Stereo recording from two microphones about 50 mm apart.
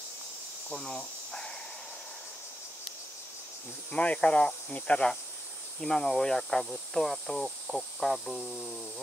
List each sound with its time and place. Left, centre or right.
0.7 s speech: centre
3.9 s speech: left
5.8 s speech: centre